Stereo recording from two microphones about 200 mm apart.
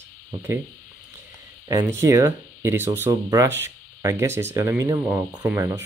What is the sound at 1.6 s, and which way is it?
Speech, 15° right (ahead or behind).